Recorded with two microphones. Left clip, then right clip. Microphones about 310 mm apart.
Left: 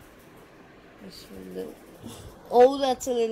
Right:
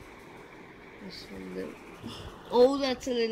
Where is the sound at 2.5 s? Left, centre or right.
Centre.